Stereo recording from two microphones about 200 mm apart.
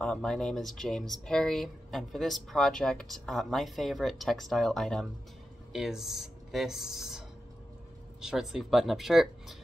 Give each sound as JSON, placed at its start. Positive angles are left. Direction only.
{"t": 0.0, "sound": "speech", "side_deg": 5}